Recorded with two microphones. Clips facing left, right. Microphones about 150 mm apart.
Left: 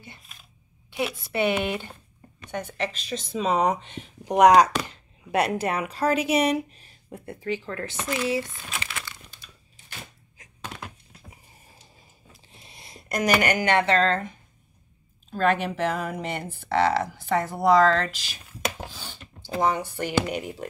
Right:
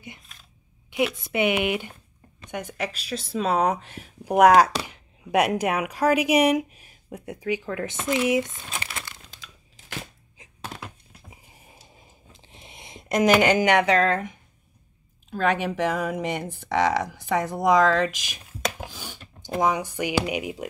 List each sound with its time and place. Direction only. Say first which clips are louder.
0.8 s speech: right 4 dB; 15° right (ahead or behind)
8.6 s crumpling: even; 30° right (ahead or behind)
9.3 s crushing: right 4 dB; 90° right
10.4 s thunk: right 1 dB; 35° right (ahead or behind)
12.3 s a sound: right 3 dB; 20° right (ahead or behind)
15.8 s speech: right 2 dB; 10° right (ahead or behind)